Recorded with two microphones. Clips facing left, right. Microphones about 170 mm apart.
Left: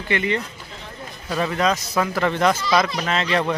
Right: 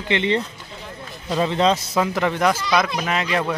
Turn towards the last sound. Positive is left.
turn(degrees=-10)  # may be behind; listen again after turning